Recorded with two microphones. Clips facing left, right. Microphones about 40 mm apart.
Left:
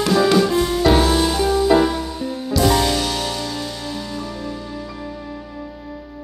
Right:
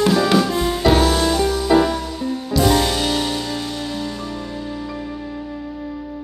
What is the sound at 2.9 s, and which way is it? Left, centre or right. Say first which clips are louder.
Music: right 2 dB; centre.